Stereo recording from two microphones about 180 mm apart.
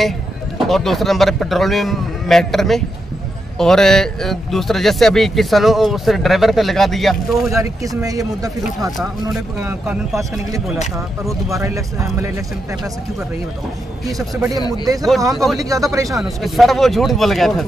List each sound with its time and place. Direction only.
0.6 s speech: centre (ahead or behind)
7.5 s speech: 20° right (ahead or behind)
15.3 s speech: centre (ahead or behind)
15.7 s speech: 20° right (ahead or behind)
16.2 s speech: centre (ahead or behind)